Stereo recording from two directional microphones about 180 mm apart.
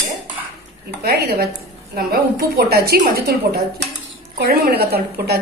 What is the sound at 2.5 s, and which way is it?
Speech, 60° right (ahead or behind).